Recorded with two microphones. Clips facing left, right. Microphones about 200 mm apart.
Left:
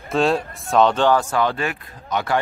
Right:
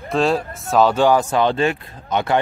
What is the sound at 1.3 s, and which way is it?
Speech, 25° right (ahead or behind).